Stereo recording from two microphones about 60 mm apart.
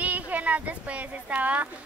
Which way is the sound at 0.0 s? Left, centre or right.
Right.